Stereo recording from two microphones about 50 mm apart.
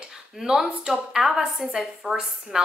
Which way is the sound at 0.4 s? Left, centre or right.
Centre.